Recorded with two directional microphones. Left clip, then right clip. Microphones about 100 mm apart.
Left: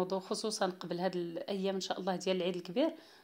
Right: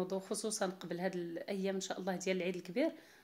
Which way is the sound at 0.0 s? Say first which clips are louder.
Left 4 dB; 10° left (ahead or behind).